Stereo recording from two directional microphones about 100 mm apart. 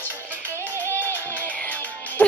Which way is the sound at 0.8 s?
20° left (ahead or behind).